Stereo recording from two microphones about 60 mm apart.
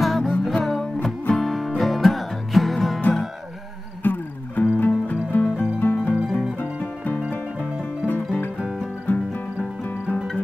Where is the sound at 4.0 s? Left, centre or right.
Left.